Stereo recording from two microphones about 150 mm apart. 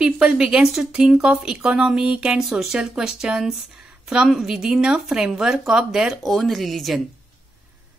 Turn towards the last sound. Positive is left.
turn(degrees=0)  # may be behind; listen again after turning